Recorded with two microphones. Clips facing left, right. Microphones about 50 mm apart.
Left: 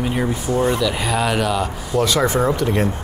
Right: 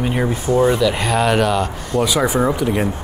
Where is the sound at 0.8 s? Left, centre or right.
Centre.